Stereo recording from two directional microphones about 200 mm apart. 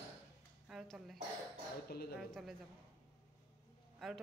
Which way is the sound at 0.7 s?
Centre (ahead or behind).